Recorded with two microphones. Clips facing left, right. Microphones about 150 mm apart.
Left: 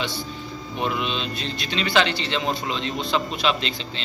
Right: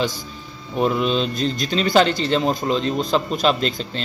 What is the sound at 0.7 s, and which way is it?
A man's voice, 40° right (ahead or behind).